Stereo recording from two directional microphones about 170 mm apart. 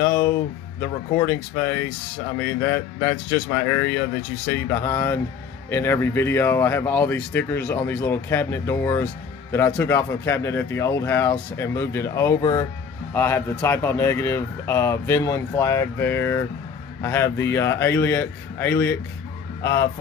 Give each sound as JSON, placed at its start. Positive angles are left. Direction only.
{"t": 0.0, "sound": "speech", "side_deg": 20}